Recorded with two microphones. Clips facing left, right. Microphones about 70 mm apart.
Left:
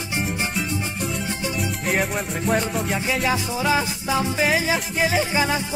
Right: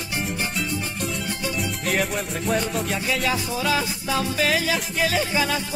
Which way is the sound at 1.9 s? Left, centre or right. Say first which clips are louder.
Left 1 dB; centre.